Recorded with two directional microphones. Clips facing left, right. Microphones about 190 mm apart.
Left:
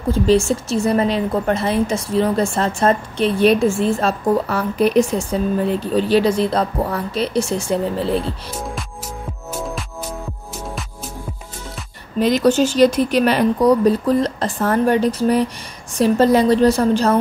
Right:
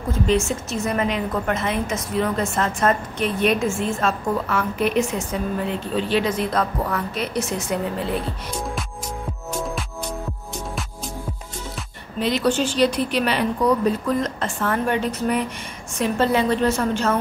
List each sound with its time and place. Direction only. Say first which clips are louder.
0.1 s a woman's voice: left 6 dB; 30° left (ahead or behind)
12.2 s a woman's voice: left 6 dB; 45° left (ahead or behind)